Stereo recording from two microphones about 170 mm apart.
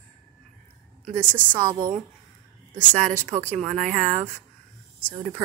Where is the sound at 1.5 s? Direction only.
25° right (ahead or behind).